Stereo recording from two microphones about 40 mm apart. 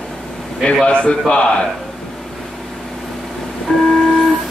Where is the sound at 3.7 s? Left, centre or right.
Centre.